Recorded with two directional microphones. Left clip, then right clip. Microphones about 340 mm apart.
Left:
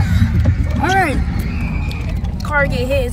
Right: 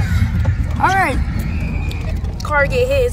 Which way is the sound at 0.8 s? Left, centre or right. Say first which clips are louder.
Right 1 dB; centre.